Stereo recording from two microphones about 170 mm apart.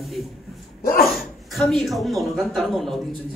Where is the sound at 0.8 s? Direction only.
60° left (ahead or behind).